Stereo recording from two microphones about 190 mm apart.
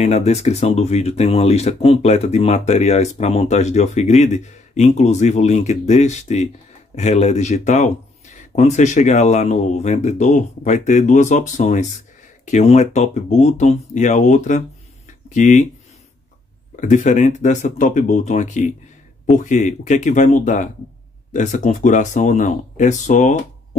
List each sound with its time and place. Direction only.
0.0 s speech: 35° left (ahead or behind)
16.7 s speech: 40° left (ahead or behind)